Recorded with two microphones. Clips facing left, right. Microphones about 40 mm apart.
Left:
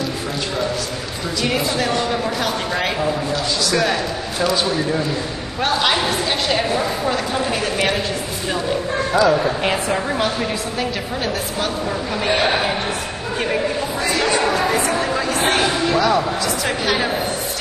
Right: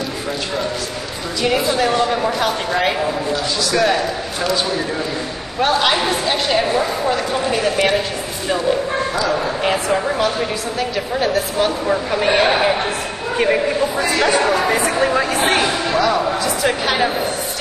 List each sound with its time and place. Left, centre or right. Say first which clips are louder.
1.4 s a woman's voice: right 4 dB; centre
9.1 s a woman's voice: left 3 dB; centre
10.8 s a woman's voice: right 6 dB; centre
15.5 s a woman's voice: right 1 dB; centre